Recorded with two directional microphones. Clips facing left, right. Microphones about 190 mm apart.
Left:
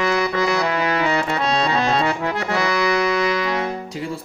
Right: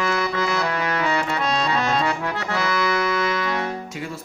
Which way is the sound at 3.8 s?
30° left (ahead or behind).